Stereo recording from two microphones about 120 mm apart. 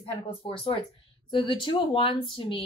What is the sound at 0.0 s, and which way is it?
A woman's voice, 45° left (ahead or behind).